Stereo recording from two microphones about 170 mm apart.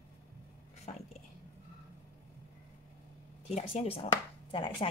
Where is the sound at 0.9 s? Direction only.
40° left (ahead or behind).